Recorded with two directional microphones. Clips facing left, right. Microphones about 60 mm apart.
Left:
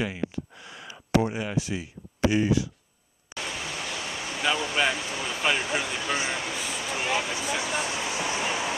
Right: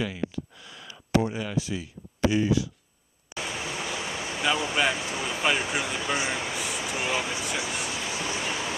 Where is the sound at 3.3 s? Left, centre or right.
Centre.